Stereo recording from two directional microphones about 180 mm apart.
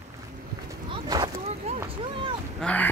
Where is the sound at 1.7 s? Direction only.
35° right (ahead or behind).